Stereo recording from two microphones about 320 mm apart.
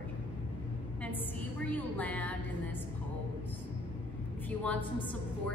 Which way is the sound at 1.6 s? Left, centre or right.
Centre.